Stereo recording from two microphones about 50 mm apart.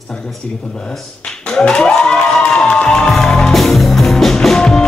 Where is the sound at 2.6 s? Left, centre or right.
Left.